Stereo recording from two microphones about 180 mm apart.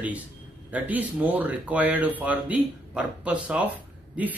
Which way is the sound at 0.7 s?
10° right (ahead or behind).